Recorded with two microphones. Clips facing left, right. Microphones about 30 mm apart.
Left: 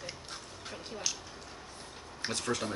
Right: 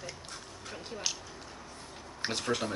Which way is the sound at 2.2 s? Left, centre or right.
Centre.